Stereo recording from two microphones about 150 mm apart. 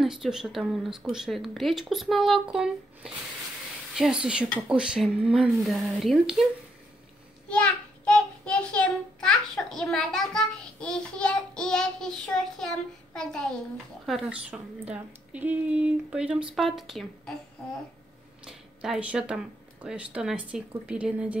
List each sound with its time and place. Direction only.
0.0 s a woman's voice: centre (ahead or behind)
7.4 s child singing: 5° left (ahead or behind)
13.1 s a woman's voice: 5° left (ahead or behind)
18.4 s speech: 5° right (ahead or behind)